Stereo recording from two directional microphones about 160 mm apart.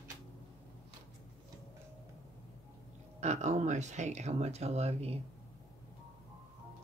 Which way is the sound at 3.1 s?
45° right (ahead or behind).